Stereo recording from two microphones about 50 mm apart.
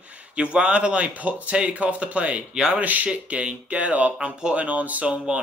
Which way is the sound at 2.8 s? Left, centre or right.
Right.